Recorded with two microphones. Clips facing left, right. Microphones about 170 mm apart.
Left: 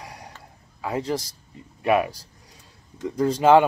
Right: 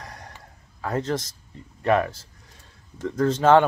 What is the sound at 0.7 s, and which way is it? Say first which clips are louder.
A man's voice: even; 10° left (ahead or behind).